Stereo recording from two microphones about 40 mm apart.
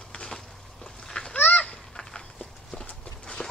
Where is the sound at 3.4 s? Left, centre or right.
Left.